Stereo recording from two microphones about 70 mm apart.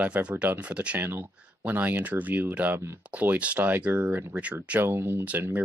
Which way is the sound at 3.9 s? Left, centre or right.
Right.